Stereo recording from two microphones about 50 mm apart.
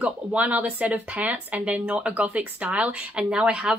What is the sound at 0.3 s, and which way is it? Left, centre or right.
A woman's voice, right.